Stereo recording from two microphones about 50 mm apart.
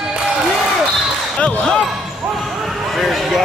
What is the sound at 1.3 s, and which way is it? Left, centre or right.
Basketball bounce, centre.